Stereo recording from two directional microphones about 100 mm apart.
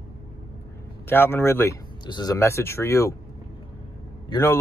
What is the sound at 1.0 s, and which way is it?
Speech, 25° left (ahead or behind).